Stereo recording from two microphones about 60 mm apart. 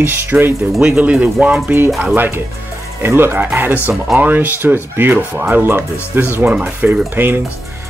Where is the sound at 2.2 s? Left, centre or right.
Right.